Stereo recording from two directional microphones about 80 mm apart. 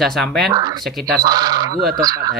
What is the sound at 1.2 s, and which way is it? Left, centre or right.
Speech, right.